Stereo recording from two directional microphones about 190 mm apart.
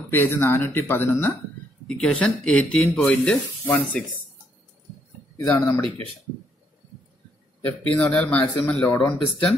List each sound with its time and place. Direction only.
0.1 s speech: 10° left (ahead or behind)
5.4 s speech: 10° left (ahead or behind)
7.6 s speech: 5° left (ahead or behind)
8.8 s speech: 15° left (ahead or behind)